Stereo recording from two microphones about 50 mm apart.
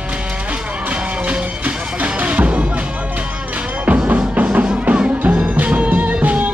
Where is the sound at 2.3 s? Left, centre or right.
Right.